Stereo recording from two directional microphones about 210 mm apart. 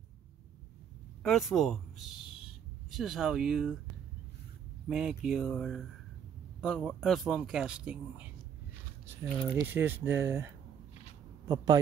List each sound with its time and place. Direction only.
1.2 s a man's voice: centre (ahead or behind)
4.8 s speech: 5° right (ahead or behind); by 11.8 s 20° right (ahead or behind)